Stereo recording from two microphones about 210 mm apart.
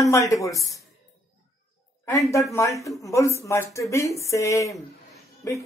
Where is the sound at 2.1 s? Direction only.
15° left (ahead or behind).